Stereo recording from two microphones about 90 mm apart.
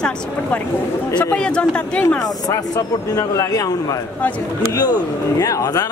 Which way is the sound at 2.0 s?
40° left (ahead or behind).